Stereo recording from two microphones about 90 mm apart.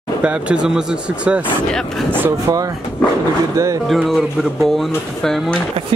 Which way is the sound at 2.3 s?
40° right (ahead or behind).